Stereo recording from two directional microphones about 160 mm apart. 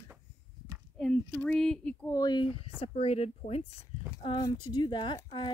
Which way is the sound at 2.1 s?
25° left (ahead or behind).